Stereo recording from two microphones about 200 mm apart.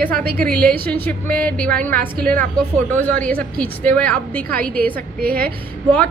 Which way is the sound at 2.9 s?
10° left (ahead or behind).